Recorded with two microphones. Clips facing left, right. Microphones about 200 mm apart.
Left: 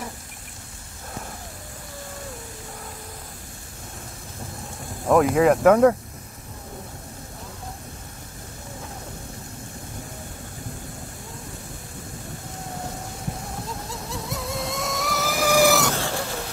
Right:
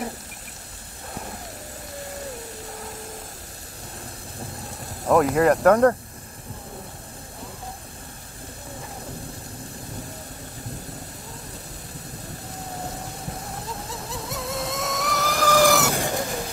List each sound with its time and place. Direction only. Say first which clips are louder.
5.0 s speech: left 1 dB; centre (ahead or behind)
13.7 s vehicle: even; centre (ahead or behind)
15.8 s a sound: right 1 dB; 15° right (ahead or behind)